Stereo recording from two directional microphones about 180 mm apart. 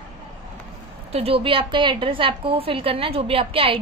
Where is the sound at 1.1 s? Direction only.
30° right (ahead or behind).